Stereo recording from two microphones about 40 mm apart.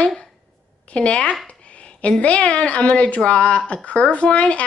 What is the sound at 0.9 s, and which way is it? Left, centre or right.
A woman's voice, left.